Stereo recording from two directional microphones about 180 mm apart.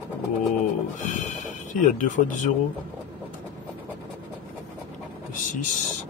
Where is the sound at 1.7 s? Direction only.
45° left (ahead or behind).